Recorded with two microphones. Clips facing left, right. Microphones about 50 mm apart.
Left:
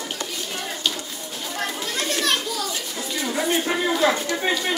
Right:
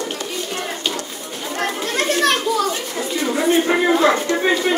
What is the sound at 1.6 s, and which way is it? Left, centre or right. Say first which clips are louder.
Children playing: right 6 dB; right.